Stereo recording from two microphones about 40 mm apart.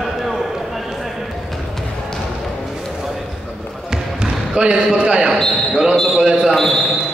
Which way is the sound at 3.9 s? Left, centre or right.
Right.